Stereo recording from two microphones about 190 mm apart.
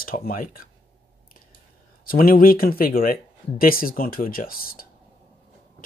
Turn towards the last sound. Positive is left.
turn(degrees=50)  # may be behind; listen again after turning